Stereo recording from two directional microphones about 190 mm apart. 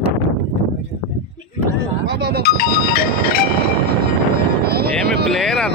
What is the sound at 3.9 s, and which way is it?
Music, 55° right (ahead or behind).